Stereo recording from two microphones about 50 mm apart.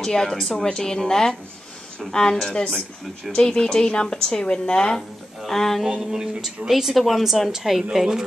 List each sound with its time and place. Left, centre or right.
0.0 s speech: centre
5.5 s a woman's voice: centre